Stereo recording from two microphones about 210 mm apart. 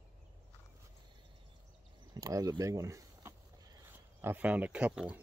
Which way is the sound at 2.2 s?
15° right (ahead or behind).